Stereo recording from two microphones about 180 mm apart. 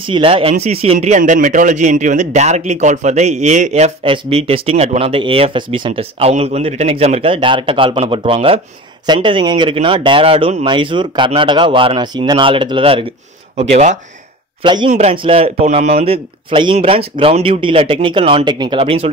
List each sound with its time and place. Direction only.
0.0 s speech: 30° right (ahead or behind)
14.6 s speech: 25° right (ahead or behind)
14.9 s speech: 35° right (ahead or behind)